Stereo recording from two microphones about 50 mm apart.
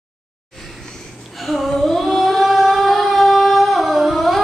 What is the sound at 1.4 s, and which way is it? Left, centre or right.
Singing, centre.